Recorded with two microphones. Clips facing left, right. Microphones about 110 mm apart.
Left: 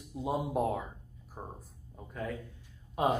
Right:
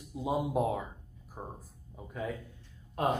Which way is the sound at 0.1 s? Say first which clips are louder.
Right 1 dB; centre (ahead or behind).